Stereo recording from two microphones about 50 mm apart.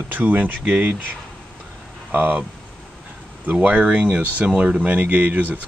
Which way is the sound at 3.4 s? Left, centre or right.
Right.